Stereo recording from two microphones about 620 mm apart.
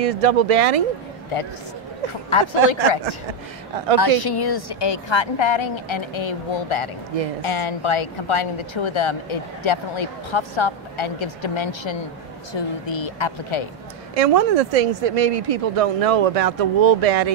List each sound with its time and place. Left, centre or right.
0.0 s speech: right
2.2 s speech: left
4.0 s speech: left
14.1 s speech: right